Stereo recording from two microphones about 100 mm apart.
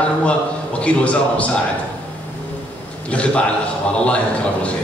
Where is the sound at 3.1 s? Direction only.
10° left (ahead or behind).